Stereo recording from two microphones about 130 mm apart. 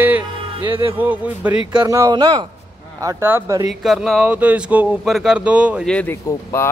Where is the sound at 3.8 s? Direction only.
Centre (ahead or behind).